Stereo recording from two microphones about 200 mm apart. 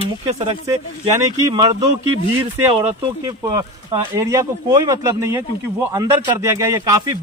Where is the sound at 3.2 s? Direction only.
20° right (ahead or behind).